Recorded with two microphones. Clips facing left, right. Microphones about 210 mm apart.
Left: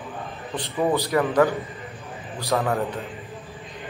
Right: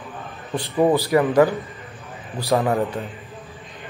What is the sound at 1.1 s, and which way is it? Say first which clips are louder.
Speech: right 2 dB; 15° right (ahead or behind).